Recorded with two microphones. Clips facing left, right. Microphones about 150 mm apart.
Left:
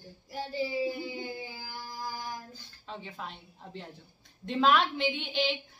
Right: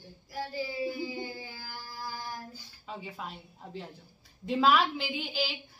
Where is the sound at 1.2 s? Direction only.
15° left (ahead or behind).